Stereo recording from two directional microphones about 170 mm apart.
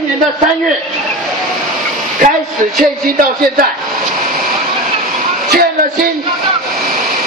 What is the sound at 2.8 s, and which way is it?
Speech, 55° right (ahead or behind).